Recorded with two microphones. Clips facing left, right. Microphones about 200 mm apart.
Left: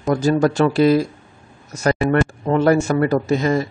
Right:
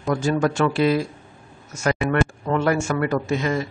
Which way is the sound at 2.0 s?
30° left (ahead or behind).